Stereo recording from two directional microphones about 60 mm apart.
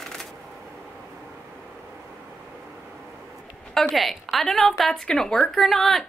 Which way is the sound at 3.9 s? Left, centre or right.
Centre.